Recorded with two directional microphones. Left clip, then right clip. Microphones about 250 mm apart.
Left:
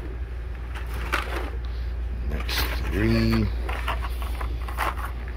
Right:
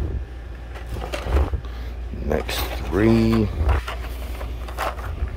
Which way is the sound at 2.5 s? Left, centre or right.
Centre.